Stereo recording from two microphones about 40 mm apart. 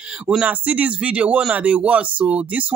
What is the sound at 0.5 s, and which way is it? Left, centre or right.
Speech, right.